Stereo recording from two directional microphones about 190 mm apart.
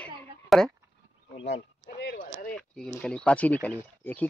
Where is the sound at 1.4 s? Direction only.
65° left (ahead or behind).